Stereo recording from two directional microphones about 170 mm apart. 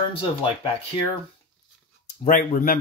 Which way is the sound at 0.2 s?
30° left (ahead or behind).